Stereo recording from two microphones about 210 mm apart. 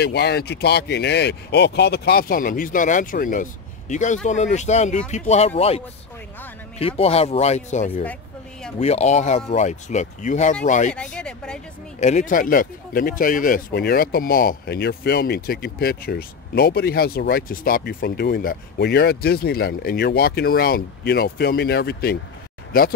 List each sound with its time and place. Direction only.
0.0 s speech: 50° left (ahead or behind); by 5.5 s 30° left (ahead or behind)
6.8 s speech: 30° left (ahead or behind)
10.9 s speech: 5° left (ahead or behind)
12.0 s speech: 35° left (ahead or behind)